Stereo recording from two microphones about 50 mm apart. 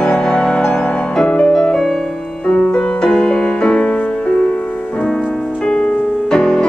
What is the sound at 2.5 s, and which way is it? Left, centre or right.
Music, left.